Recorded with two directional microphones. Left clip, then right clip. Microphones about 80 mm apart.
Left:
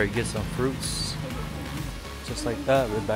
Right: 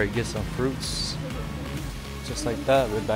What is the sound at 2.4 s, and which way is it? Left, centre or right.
Speech, centre.